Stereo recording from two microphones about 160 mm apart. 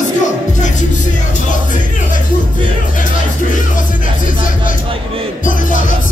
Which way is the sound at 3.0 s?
55° left (ahead or behind).